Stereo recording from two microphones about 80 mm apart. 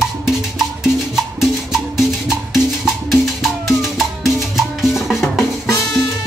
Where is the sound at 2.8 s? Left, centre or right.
Centre.